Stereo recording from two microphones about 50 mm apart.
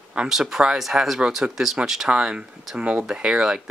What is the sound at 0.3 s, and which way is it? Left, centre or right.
Speech, centre.